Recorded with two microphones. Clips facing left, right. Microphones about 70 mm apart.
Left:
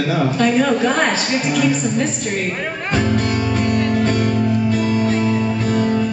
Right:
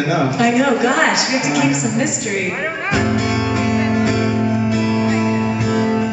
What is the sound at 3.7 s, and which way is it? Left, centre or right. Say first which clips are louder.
Music: even; centre.